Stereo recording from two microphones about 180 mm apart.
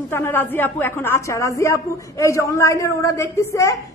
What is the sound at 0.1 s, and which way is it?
Speech, 10° left (ahead or behind).